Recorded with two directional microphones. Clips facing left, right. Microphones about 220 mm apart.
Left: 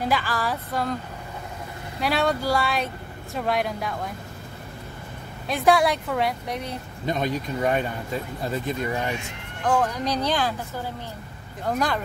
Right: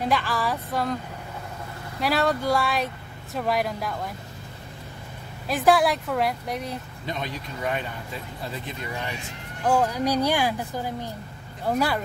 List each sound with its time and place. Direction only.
0.0 s a woman's voice: centre (ahead or behind)
2.0 s a woman's voice: centre (ahead or behind)
5.5 s a woman's voice: centre (ahead or behind)
7.1 s speech: 45° left (ahead or behind)
9.6 s speech: 10° right (ahead or behind)